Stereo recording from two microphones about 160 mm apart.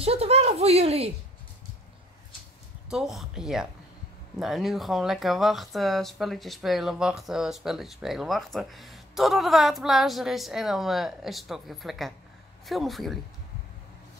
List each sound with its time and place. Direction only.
0.0 s a woman's voice: 40° right (ahead or behind)
2.9 s speech: centre (ahead or behind)